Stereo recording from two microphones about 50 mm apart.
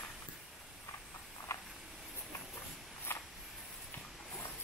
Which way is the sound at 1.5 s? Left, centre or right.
Left.